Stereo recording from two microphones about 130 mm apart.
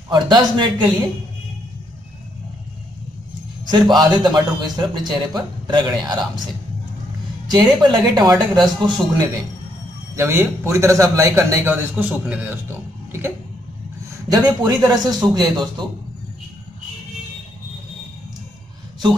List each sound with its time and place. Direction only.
0.1 s a man's voice: 35° right (ahead or behind)
3.6 s a man's voice: 30° right (ahead or behind)
7.5 s a man's voice: 35° right (ahead or behind)
10.1 s a man's voice: 20° right (ahead or behind)
14.1 s a man's voice: 25° right (ahead or behind)